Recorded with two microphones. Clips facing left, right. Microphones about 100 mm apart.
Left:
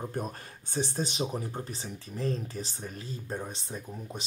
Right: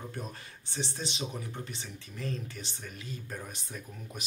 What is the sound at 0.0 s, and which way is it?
Speech, 45° left (ahead or behind).